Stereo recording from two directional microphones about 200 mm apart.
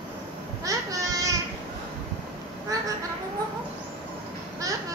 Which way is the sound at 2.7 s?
15° right (ahead or behind).